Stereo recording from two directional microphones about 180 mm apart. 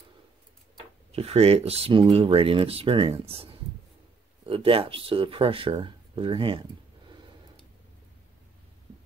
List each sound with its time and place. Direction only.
1.1 s speech: 35° right (ahead or behind)